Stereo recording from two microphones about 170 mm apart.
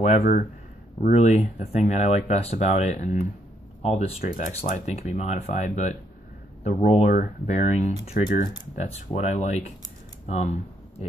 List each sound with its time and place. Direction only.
0.2 s speech: 60° left (ahead or behind)
1.1 s speech: 45° left (ahead or behind)
4.2 s speech: 55° left (ahead or behind)
4.5 s speech: 40° left (ahead or behind)
8.1 s speech: 50° left (ahead or behind)